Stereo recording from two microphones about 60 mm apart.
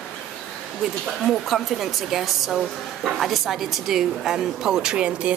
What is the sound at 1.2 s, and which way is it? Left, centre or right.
A woman's voice, centre.